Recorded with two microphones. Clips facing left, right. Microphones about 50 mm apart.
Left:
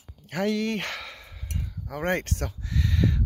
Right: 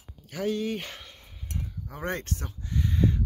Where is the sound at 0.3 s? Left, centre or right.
Left.